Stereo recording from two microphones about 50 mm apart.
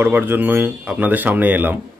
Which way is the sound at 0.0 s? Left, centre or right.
Right.